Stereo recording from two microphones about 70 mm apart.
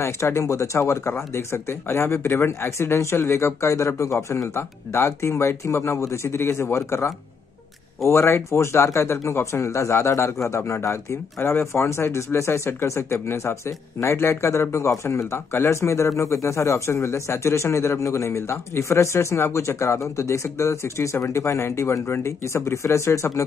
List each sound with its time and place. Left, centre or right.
0.0 s speech: left